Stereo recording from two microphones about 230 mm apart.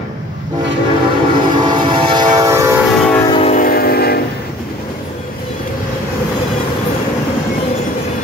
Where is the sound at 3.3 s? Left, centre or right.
Left.